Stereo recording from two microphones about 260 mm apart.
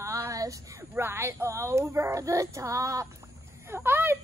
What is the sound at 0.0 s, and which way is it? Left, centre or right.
A woman's voice, centre.